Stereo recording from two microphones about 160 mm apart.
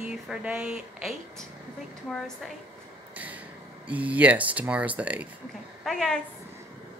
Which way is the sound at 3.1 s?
10° right (ahead or behind).